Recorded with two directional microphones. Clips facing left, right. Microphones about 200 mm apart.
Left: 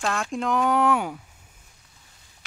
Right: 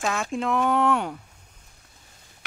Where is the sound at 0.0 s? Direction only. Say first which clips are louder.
Even; centre (ahead or behind).